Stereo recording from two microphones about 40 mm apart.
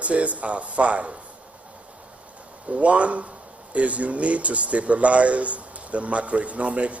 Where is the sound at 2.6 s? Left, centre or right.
Right.